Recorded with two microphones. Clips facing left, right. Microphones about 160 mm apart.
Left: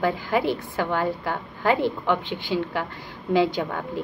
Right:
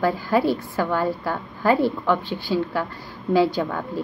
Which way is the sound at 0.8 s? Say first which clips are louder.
Right 1 dB; 45° right (ahead or behind).